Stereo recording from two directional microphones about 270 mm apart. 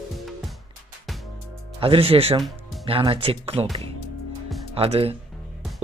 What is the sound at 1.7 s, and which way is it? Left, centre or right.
Speech, centre.